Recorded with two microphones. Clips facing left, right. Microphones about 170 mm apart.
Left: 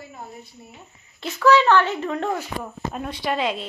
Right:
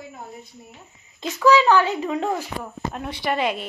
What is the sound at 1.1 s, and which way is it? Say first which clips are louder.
A woman's voice: even; 15° right (ahead or behind).